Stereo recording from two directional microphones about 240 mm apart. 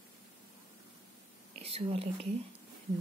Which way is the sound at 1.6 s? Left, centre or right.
Right.